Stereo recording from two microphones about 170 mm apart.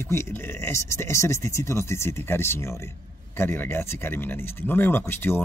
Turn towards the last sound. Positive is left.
turn(degrees=10)  # may be behind; listen again after turning